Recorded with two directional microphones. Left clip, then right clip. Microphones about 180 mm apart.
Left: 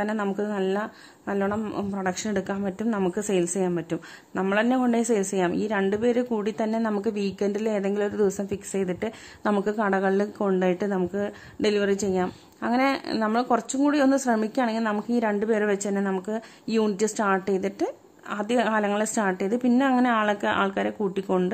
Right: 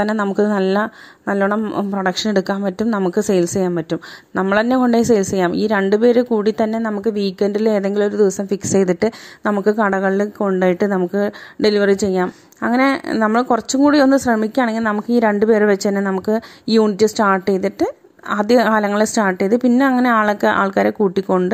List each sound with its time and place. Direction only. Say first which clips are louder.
0.0 s a woman's voice: right 10 dB; 35° right (ahead or behind)
8.7 s a woman's voice: right 13 dB; 35° right (ahead or behind)